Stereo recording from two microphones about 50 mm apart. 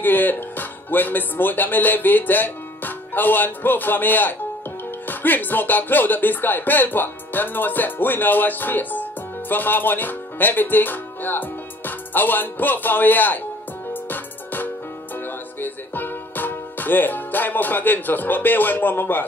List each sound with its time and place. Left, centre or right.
0.0 s speech: left
14.0 s music: left